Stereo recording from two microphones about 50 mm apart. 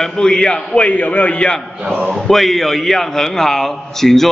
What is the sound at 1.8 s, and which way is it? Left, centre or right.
Speech, right.